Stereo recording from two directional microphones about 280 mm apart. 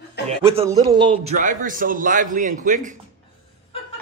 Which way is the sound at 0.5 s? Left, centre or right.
Centre.